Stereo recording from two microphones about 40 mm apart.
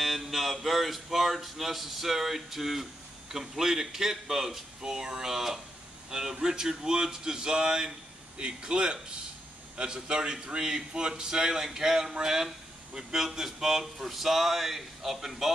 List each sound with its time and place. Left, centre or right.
0.0 s mantra: centre
0.7 s a man's voice: centre